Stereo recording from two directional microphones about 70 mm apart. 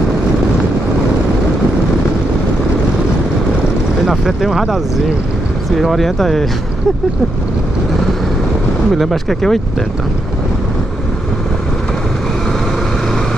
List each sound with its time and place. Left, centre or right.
4.0 s speech: centre
5.8 s speech: centre
8.9 s speech: centre